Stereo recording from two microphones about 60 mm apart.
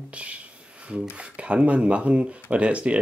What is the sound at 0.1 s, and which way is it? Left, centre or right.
Speech, right.